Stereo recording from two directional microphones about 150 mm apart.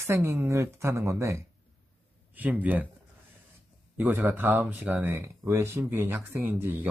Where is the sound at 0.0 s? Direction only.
20° right (ahead or behind).